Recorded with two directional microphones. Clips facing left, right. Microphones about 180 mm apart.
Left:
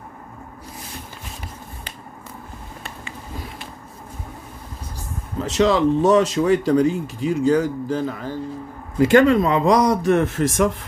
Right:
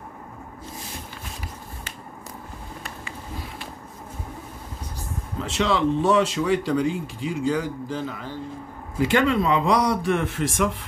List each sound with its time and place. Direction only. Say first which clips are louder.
5.4 s speech: left 5 dB; 40° left (ahead or behind)